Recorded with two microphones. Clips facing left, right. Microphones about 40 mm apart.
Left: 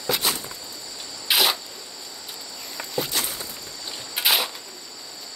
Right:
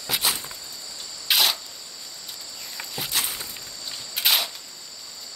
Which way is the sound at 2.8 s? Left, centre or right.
Centre.